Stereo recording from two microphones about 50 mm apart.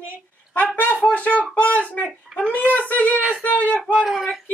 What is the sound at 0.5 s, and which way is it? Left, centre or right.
Speech, left.